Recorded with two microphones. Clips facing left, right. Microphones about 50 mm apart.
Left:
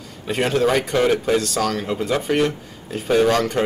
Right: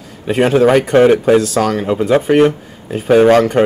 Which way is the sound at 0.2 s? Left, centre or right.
Centre.